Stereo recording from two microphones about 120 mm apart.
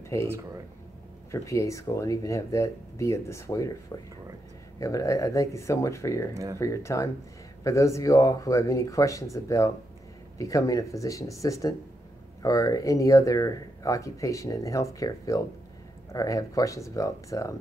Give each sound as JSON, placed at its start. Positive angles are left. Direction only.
{"t": 0.1, "sound": "speech", "side_deg": 25}
{"t": 1.3, "sound": "speech", "side_deg": 25}
{"t": 4.7, "sound": "speech", "side_deg": 30}
{"t": 6.3, "sound": "speech", "side_deg": -30}
{"t": 6.6, "sound": "speech", "side_deg": 25}